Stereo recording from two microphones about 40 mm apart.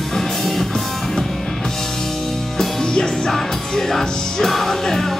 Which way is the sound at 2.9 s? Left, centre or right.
Centre.